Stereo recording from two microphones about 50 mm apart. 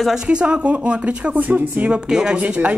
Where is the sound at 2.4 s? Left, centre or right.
Right.